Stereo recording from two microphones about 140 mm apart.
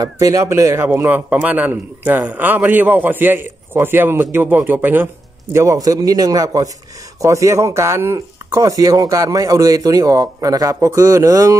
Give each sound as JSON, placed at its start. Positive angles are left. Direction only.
{"t": 0.0, "sound": "a man's voice", "side_deg": -25}